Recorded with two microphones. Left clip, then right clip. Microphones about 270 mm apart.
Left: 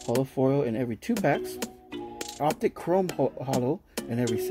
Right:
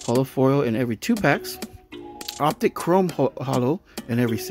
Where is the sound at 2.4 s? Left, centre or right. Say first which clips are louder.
Right 5 dB; right.